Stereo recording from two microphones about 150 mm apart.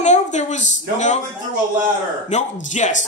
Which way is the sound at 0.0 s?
50° left (ahead or behind).